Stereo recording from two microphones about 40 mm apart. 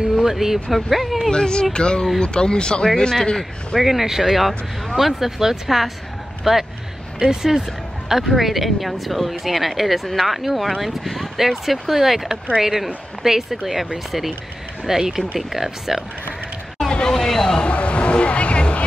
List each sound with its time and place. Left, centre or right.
0.1 s speech: centre
1.3 s speech: centre
3.8 s a woman's voice: centre
14.9 s a woman's voice: centre
17.1 s speech: centre
17.6 s a sound: left